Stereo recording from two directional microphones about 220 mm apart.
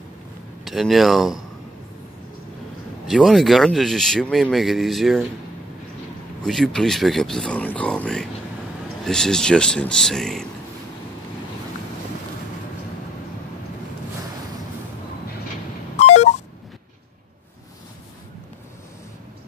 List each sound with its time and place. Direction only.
0.7 s speech: centre (ahead or behind)
3.1 s speech: centre (ahead or behind)
6.4 s speech: centre (ahead or behind)
16.0 s a sound: 30° left (ahead or behind)